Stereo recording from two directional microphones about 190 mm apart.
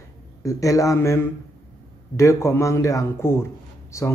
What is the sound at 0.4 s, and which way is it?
Speech, 15° left (ahead or behind).